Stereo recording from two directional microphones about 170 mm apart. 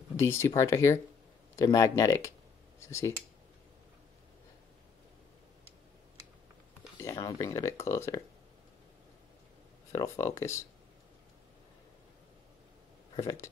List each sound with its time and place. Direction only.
0.2 s speech: 15° left (ahead or behind)
7.0 s speech: 20° left (ahead or behind)
9.9 s speech: 20° left (ahead or behind)
13.1 s speech: 20° left (ahead or behind)